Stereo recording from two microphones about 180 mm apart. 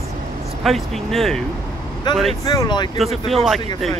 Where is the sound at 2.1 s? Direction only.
25° left (ahead or behind).